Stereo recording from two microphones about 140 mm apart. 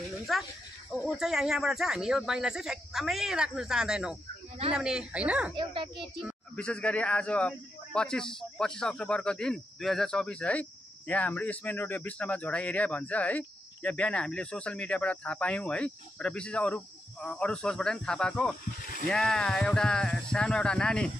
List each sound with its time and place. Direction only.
0.3 s speech: centre (ahead or behind)
5.6 s a woman's voice: 35° right (ahead or behind)
5.9 s a man's voice: centre (ahead or behind)